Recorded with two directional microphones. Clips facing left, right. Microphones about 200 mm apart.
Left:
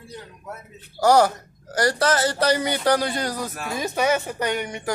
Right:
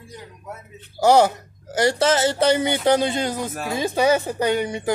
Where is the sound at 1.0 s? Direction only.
25° right (ahead or behind).